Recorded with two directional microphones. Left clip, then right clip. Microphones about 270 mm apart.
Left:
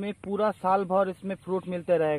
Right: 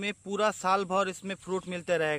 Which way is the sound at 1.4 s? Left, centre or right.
Right.